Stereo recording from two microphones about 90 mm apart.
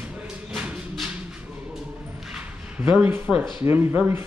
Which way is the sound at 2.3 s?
10° right (ahead or behind).